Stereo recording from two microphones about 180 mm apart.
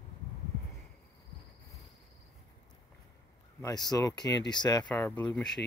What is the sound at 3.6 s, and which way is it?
Speech, 20° left (ahead or behind).